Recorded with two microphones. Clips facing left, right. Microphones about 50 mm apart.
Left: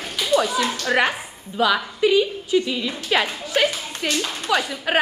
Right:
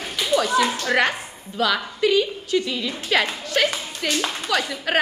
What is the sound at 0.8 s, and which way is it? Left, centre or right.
A woman's voice, centre.